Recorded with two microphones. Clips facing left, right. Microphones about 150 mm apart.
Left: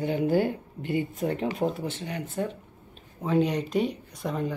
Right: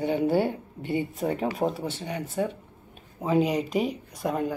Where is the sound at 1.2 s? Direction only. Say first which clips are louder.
Right 1 dB; 40° right (ahead or behind).